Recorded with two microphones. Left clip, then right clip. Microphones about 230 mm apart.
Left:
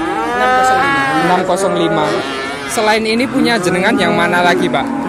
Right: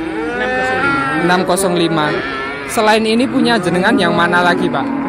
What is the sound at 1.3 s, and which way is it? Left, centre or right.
A man's voice, centre.